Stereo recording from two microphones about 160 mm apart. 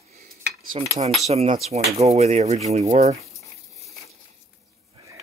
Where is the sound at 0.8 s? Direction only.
35° right (ahead or behind).